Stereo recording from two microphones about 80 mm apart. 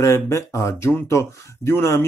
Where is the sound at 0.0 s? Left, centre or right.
Left.